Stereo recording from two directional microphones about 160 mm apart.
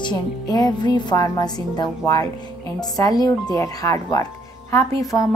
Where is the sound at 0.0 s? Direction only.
25° left (ahead or behind).